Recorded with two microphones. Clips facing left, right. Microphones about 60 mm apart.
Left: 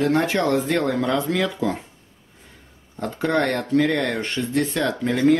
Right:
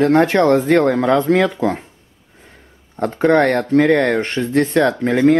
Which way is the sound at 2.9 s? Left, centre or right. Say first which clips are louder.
Right 8 dB; right.